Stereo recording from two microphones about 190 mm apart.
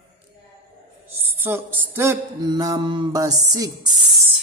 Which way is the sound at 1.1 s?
10° right (ahead or behind).